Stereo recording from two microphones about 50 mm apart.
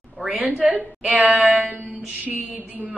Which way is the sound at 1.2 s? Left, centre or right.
Right.